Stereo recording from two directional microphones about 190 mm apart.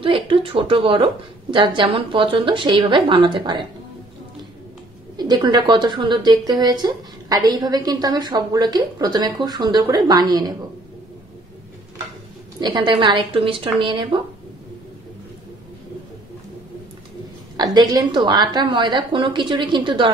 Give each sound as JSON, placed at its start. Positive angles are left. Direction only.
{"t": 0.0, "sound": "a woman's voice", "side_deg": -25}
{"t": 5.1, "sound": "a woman's voice", "side_deg": -20}
{"t": 12.5, "sound": "a woman's voice", "side_deg": -20}
{"t": 17.6, "sound": "a woman's voice", "side_deg": -20}